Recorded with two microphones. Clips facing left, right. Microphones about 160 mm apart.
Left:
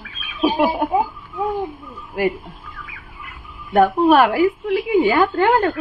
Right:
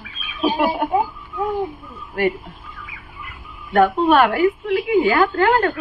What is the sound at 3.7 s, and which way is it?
A woman's voice, 5° left (ahead or behind).